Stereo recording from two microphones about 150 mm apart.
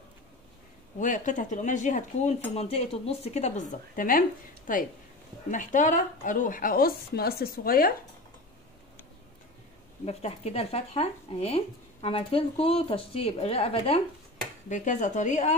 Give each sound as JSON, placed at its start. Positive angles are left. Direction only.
{"t": 0.9, "sound": "speech", "side_deg": 60}
{"t": 2.5, "sound": "speech", "side_deg": 40}
{"t": 10.0, "sound": "speech", "side_deg": 45}
{"t": 14.7, "sound": "speech", "side_deg": 55}